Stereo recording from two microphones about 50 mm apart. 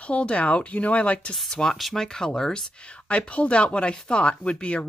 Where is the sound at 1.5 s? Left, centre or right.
Centre.